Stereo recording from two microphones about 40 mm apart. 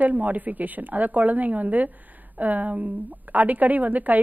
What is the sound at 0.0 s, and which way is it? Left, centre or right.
A woman's voice, right.